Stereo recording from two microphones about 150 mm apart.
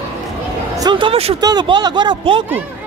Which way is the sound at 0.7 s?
25° right (ahead or behind).